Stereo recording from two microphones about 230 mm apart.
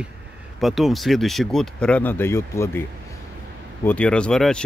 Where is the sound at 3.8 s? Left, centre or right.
Centre.